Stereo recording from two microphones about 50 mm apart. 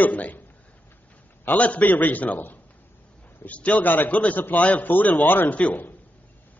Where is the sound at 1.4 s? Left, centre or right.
Left.